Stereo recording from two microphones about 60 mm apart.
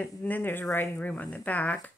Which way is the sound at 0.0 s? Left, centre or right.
Left.